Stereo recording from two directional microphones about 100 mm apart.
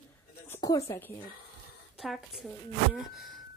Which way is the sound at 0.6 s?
35° left (ahead or behind).